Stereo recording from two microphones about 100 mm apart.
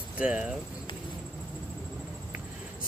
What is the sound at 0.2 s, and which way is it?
Speech, 15° right (ahead or behind).